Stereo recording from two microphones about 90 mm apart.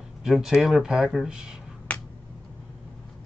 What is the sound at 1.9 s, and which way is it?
Finger snapping, 15° left (ahead or behind).